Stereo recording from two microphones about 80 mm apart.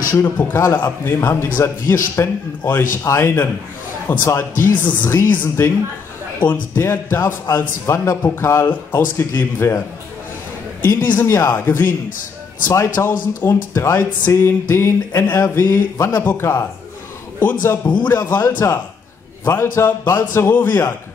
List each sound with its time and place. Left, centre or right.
0.1 s a man's voice: left
6.7 s a man's voice: left
10.8 s speech: left
11.2 s a man's voice: left
17.4 s speech: left